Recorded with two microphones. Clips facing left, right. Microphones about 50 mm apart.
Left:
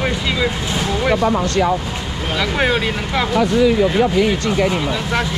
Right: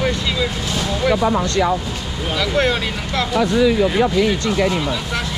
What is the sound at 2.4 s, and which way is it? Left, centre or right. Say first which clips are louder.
Speech: left 1 dB; centre.